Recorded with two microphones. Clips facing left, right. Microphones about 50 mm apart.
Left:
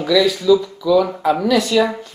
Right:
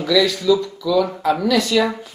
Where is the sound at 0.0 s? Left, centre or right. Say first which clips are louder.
Left 2 dB; centre.